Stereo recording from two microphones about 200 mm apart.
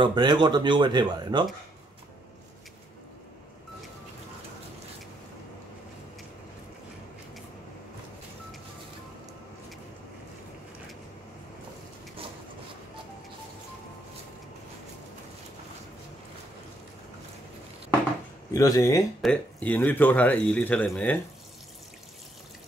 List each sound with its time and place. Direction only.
0.0 s speech: 20° right (ahead or behind)
18.5 s speech: 15° left (ahead or behind)
19.2 s speech: 5° left (ahead or behind)